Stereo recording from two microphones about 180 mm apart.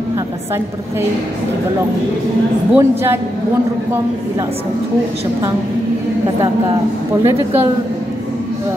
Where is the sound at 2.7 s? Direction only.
15° right (ahead or behind).